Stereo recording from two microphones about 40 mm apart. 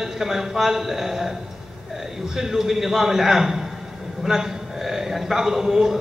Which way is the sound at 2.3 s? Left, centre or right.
Centre.